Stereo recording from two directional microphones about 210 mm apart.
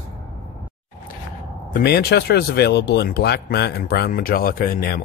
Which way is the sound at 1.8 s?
50° left (ahead or behind).